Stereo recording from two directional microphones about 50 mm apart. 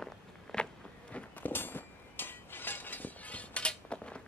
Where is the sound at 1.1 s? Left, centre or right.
Left.